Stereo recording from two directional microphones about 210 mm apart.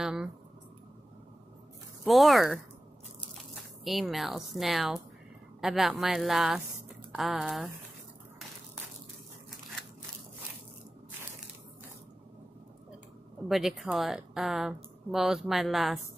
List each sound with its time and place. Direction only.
0.0 s a sound: centre (ahead or behind)
2.0 s a woman's voice: centre (ahead or behind)
3.8 s a woman's voice: centre (ahead or behind)
13.5 s a woman's voice: centre (ahead or behind)